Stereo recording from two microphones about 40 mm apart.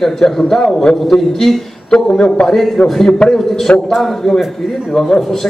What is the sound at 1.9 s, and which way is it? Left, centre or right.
Speech, left.